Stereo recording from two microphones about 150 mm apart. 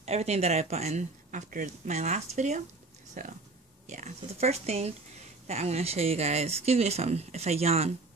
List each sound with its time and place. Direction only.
0.0 s speech: 45° right (ahead or behind)